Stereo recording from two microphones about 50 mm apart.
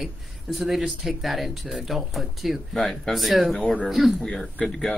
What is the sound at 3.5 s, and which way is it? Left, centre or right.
Speech, left.